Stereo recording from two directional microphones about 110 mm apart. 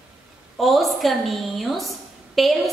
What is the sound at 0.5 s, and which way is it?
A woman's voice, centre (ahead or behind).